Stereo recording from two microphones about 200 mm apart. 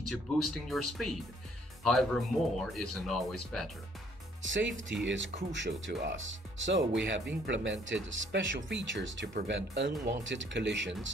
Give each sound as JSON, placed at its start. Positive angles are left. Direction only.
{"t": 0.1, "sound": "speech", "side_deg": 0}
{"t": 4.5, "sound": "speech", "side_deg": -70}